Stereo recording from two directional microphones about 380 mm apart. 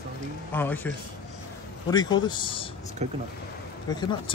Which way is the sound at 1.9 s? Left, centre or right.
Centre.